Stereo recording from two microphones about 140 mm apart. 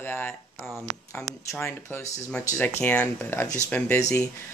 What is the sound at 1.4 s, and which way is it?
Speech, 15° left (ahead or behind).